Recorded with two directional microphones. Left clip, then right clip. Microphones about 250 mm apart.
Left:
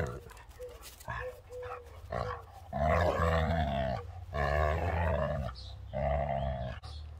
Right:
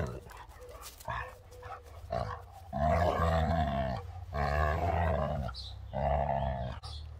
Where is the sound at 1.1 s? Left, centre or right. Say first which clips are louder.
Right 2 dB; centre.